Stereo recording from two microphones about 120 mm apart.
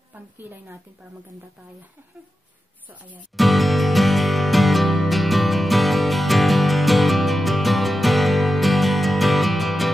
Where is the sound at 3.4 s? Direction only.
Centre (ahead or behind).